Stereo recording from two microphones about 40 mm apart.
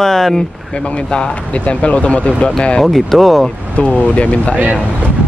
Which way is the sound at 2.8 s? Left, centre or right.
Centre.